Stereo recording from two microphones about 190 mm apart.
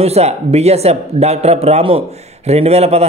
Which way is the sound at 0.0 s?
35° right (ahead or behind).